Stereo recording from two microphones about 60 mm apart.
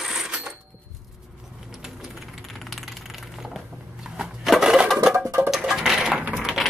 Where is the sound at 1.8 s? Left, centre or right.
Centre.